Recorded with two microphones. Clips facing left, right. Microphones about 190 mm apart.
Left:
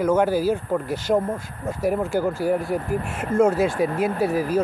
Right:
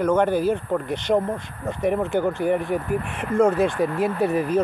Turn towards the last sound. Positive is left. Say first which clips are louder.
# even
turn(degrees=0)  # may be behind; listen again after turning